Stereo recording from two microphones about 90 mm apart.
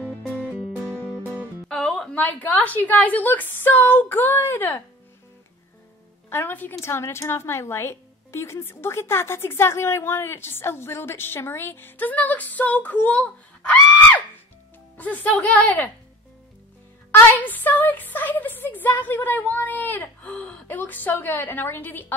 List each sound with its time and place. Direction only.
1.7 s music: 5° left (ahead or behind)
2.1 s a woman's voice: 15° left (ahead or behind)
6.3 s a woman's voice: 20° left (ahead or behind)
17.1 s a woman's voice: 20° left (ahead or behind)